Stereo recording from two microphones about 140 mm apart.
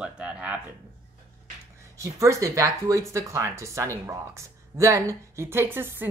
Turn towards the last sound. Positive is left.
turn(degrees=-15)  # may be behind; listen again after turning